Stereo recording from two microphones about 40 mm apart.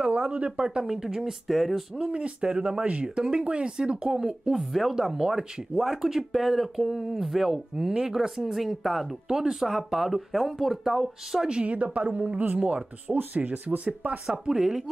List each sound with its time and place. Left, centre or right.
0.0 s a sound: right
0.8 s speech: centre
1.5 s speech: centre
2.0 s speech: right
4.6 s speech: centre
11.4 s a woman's voice: right
14.3 s speech: centre